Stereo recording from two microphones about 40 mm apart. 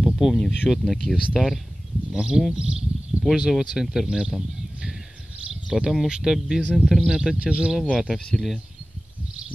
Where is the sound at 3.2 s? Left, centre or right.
Right.